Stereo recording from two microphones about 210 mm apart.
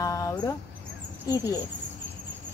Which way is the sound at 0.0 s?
15° left (ahead or behind).